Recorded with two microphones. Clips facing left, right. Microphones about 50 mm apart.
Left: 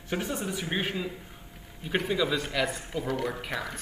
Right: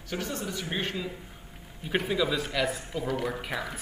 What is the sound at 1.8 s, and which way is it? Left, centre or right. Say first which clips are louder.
A man's voice: even; centre.